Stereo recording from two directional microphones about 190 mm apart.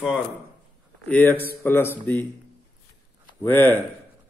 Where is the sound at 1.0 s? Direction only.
10° left (ahead or behind).